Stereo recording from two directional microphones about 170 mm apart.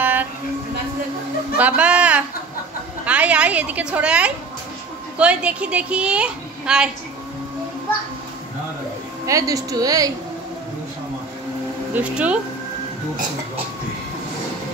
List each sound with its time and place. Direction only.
0.0 s train: 10° right (ahead or behind)
1.6 s a woman's voice: 5° right (ahead or behind)
9.2 s a woman's voice: 20° right (ahead or behind)
11.9 s a woman's voice: 5° right (ahead or behind)